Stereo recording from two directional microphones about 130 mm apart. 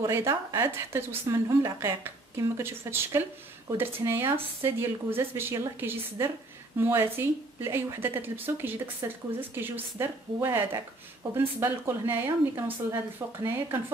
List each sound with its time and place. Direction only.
0.0 s a woman's voice: 20° right (ahead or behind)